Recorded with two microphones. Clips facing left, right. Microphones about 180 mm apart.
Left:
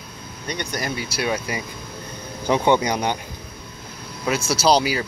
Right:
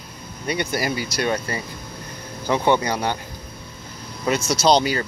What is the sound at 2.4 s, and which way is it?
Speech, 15° left (ahead or behind).